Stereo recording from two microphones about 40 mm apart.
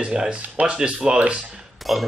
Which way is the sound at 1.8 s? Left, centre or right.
Centre.